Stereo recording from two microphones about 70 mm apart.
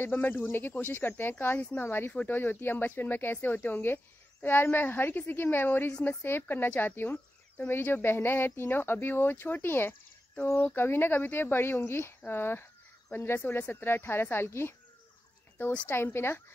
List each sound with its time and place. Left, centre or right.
0.0 s a woman's voice: left
15.5 s speech: left